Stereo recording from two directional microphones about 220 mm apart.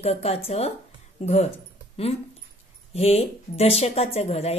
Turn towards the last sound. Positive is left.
turn(degrees=30)  # may be behind; listen again after turning